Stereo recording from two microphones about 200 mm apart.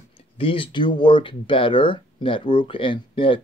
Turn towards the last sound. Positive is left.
turn(degrees=25)  # may be behind; listen again after turning